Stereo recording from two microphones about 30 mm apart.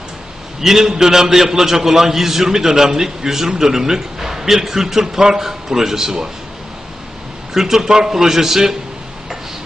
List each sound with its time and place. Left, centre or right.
0.6 s a man's voice: centre
7.5 s a man's voice: centre